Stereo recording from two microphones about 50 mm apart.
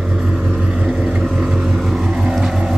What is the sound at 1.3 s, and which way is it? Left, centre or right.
Vehicle, centre.